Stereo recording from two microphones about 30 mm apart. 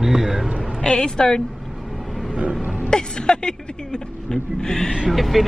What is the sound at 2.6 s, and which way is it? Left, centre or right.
Music, right.